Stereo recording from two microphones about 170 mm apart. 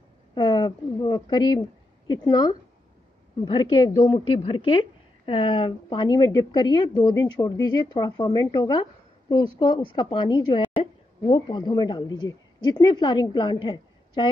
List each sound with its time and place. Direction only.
0.3 s a woman's voice: 25° left (ahead or behind)